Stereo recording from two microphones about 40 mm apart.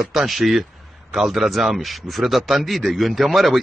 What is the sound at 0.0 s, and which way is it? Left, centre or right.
A man's voice, centre.